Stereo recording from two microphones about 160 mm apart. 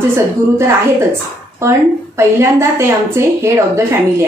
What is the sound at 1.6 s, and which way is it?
A woman's voice, 15° right (ahead or behind).